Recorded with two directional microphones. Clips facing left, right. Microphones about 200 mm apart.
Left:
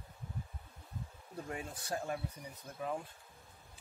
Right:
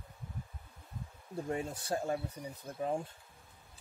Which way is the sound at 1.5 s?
30° right (ahead or behind).